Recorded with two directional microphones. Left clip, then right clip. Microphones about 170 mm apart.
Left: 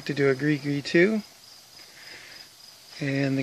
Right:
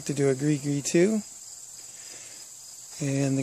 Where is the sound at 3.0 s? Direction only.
20° right (ahead or behind).